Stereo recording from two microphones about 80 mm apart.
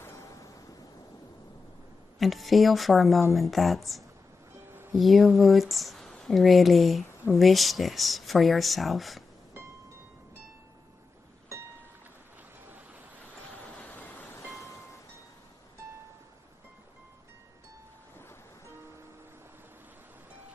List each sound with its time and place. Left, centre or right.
0.0 s a sound: left
2.1 s speech: centre
13.7 s vehicle: centre